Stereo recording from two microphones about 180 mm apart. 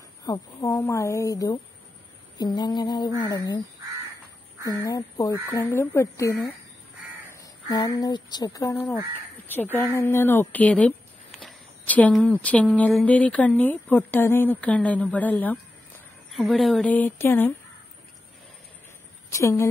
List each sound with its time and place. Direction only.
0.2 s speech: 20° left (ahead or behind)
4.6 s speech: 20° left (ahead or behind)
19.3 s speech: 15° left (ahead or behind)